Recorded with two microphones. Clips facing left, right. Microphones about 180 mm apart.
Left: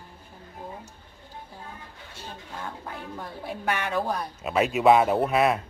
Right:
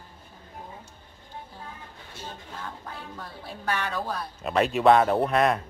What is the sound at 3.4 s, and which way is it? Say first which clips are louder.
Speech: left 1 dB; 15° left (ahead or behind).